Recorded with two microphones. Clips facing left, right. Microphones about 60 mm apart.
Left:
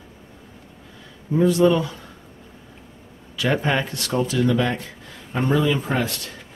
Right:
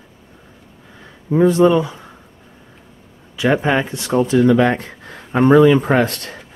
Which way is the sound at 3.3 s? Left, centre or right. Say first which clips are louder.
Right 5 dB; right.